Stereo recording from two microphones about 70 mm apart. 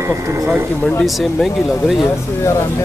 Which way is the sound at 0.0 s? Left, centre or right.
Right.